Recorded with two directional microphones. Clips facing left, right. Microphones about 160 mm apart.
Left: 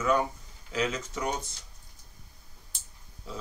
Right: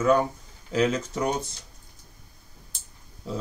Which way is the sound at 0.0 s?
35° right (ahead or behind).